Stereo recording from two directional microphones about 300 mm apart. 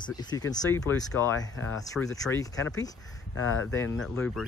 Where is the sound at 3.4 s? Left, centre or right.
Left.